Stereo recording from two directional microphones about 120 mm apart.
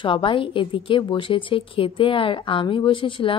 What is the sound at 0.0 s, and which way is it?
A woman's voice, 45° left (ahead or behind).